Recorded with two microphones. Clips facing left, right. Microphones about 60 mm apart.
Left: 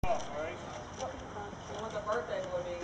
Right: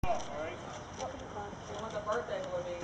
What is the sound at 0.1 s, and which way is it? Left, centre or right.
Vehicle, right.